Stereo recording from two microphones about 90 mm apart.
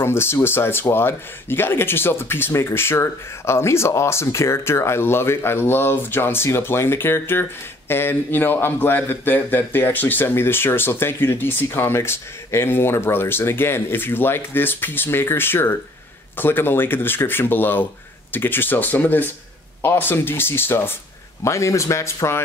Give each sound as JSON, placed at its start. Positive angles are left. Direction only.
{"t": 0.0, "sound": "speech", "side_deg": 25}